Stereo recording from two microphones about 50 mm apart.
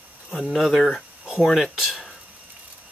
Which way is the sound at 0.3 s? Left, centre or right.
Centre.